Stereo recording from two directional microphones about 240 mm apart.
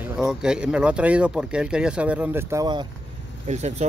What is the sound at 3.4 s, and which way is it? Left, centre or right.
Speech, right.